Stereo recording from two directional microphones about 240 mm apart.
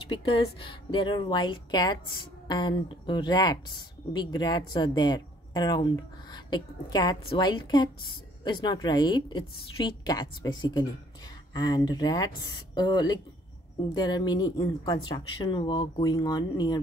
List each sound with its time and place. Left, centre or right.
0.1 s speech: left